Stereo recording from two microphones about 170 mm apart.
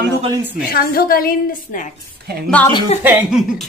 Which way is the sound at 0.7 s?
60° left (ahead or behind).